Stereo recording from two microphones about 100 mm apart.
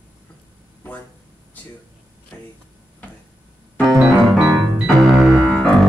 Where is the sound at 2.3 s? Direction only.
20° left (ahead or behind).